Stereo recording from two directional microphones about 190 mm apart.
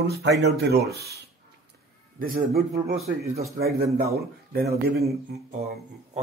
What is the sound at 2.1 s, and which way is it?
Speech, 50° right (ahead or behind).